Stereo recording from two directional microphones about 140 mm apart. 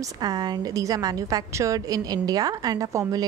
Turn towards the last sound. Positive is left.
turn(degrees=-25)  # may be behind; listen again after turning